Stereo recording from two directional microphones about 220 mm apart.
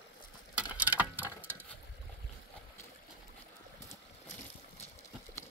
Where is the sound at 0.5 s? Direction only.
5° right (ahead or behind).